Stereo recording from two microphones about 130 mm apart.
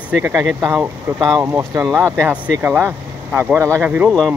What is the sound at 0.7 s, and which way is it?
Speech, centre (ahead or behind).